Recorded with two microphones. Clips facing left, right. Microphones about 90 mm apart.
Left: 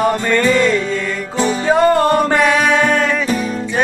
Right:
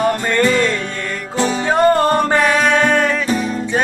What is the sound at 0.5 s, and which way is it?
Music, 15° left (ahead or behind).